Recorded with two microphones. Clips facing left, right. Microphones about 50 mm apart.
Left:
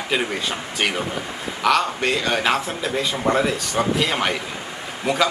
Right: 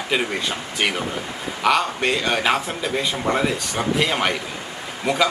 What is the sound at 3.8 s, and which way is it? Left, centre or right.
Speech, right.